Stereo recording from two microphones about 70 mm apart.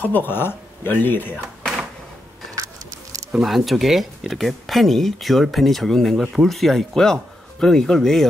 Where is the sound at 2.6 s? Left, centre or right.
Right.